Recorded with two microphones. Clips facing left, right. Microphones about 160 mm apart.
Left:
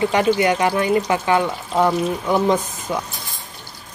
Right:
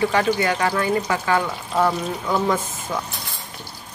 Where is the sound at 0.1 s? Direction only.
20° left (ahead or behind).